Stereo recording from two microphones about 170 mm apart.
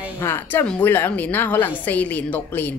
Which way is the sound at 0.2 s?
10° left (ahead or behind).